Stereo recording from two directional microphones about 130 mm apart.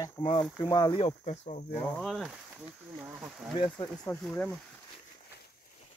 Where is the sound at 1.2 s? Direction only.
60° left (ahead or behind).